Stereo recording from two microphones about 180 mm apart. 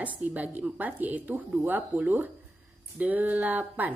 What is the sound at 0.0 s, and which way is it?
Speech, 10° right (ahead or behind).